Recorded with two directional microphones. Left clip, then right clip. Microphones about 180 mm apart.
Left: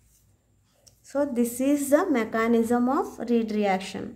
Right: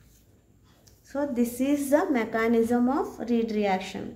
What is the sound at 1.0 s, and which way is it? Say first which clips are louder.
A woman's voice: left 2 dB; 50° left (ahead or behind).